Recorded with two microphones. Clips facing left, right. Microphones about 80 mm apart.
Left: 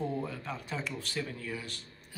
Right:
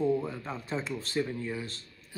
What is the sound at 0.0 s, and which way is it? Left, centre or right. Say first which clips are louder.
Speech: right 6 dB; right.